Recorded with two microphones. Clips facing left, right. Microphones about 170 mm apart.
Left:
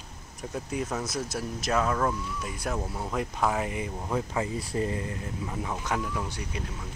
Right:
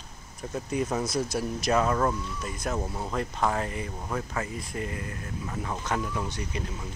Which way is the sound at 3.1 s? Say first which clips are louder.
Even; 5° left (ahead or behind).